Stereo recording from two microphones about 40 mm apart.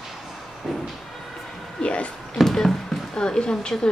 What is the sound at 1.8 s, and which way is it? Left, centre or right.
Speech, left.